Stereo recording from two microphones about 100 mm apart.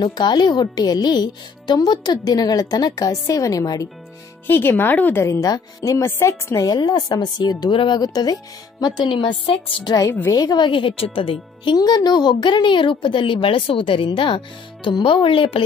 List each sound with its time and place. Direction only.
0.0 s speech: 50° left (ahead or behind)
4.5 s speech: 20° left (ahead or behind)
5.2 s speech: 30° left (ahead or behind); by 9.6 s 60° left (ahead or behind)
10.0 s speech: 20° left (ahead or behind)
10.3 s speech: 40° left (ahead or behind)
10.7 s a woman's voice: 60° left (ahead or behind)
11.7 s a woman's voice: 40° left (ahead or behind); by 15.6 s 65° left (ahead or behind)